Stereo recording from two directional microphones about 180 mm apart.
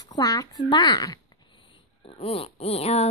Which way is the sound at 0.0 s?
20° left (ahead or behind).